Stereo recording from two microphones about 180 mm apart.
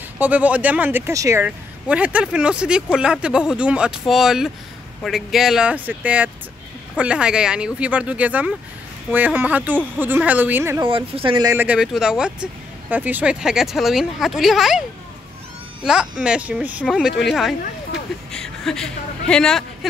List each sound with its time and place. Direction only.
0.2 s speech: 10° right (ahead or behind)
10.8 s speech: 30° right (ahead or behind)
11.6 s a woman's voice: 5° right (ahead or behind)